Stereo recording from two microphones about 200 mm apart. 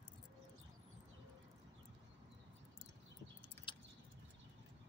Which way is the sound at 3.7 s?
25° left (ahead or behind).